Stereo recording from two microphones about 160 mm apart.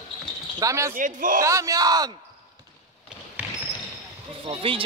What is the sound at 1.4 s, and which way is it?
Speech, 20° right (ahead or behind).